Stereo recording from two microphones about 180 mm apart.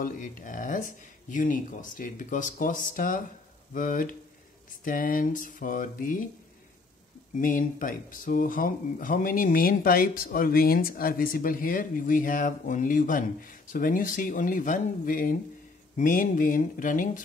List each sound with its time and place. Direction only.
0.0 s speech: 45° left (ahead or behind)
7.3 s speech: 50° left (ahead or behind)